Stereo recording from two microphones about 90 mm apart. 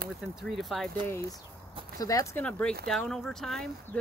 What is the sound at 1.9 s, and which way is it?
Speech, 40° left (ahead or behind).